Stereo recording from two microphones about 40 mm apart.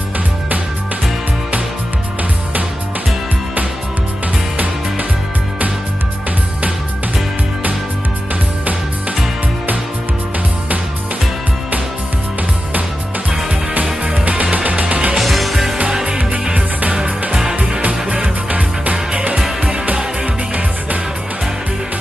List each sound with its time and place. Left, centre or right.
14.0 s music: right
15.1 s music: centre
17.3 s music: right
18.0 s music: right